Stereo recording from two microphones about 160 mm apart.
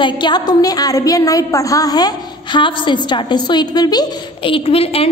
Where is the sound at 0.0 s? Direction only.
30° left (ahead or behind).